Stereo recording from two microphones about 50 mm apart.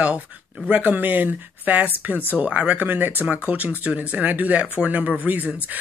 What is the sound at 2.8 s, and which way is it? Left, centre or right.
Speech, right.